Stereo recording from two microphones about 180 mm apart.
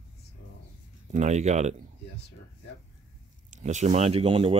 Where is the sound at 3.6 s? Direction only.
40° right (ahead or behind).